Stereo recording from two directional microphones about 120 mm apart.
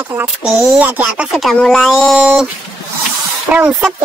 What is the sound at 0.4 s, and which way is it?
Speech, 15° right (ahead or behind).